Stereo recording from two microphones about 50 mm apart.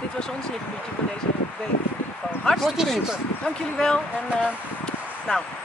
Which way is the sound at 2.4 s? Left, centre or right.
Centre.